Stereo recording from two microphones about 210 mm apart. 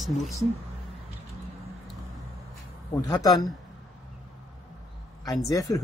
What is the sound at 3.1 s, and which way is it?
Speech, 15° left (ahead or behind).